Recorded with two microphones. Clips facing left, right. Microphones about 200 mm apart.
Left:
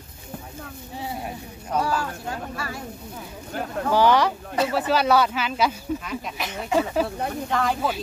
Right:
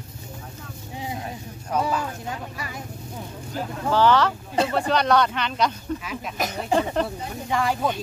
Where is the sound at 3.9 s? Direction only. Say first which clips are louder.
Even; 10° left (ahead or behind).